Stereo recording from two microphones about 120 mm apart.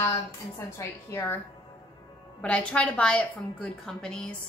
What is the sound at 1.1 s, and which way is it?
Speech, 15° left (ahead or behind).